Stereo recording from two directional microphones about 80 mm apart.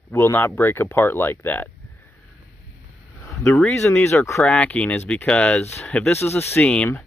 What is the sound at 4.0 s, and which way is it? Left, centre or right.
Speech, left.